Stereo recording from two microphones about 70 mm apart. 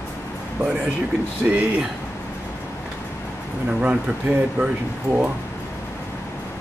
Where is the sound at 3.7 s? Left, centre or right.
Centre.